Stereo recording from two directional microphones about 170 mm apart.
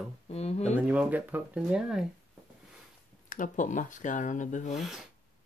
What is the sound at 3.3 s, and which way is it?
Speech, 50° left (ahead or behind).